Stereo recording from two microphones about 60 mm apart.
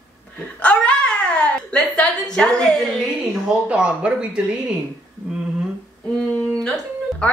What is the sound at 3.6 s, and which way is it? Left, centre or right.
Speech, right.